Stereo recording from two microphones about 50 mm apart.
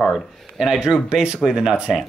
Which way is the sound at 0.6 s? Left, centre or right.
Centre.